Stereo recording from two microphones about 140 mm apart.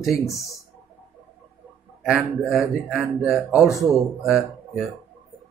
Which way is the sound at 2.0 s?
5° right (ahead or behind).